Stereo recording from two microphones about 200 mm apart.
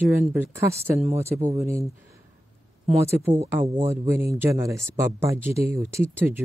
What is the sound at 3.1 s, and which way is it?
A woman's voice, 10° right (ahead or behind).